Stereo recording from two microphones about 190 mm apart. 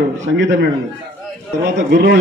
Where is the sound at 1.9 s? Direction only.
60° right (ahead or behind).